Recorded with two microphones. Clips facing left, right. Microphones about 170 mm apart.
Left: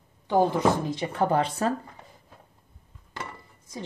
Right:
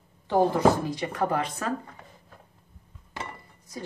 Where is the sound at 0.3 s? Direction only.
20° left (ahead or behind).